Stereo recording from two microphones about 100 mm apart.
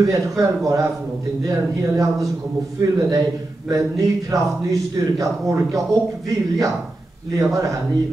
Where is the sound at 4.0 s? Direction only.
35° right (ahead or behind).